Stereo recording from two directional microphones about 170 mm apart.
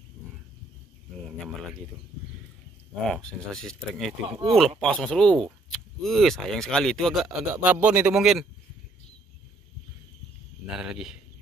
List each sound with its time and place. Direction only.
3.1 s speech: 5° left (ahead or behind)
4.3 s speech: 35° right (ahead or behind)
4.6 s a man's voice: 5° left (ahead or behind)
10.8 s speech: 5° right (ahead or behind)